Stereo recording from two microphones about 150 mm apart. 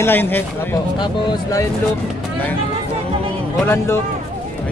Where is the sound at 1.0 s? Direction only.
30° left (ahead or behind).